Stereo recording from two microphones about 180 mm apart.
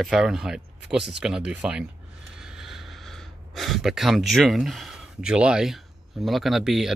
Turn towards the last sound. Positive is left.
turn(degrees=0)  # may be behind; listen again after turning